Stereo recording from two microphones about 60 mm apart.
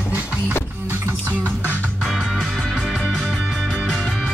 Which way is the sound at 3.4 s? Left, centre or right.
Centre.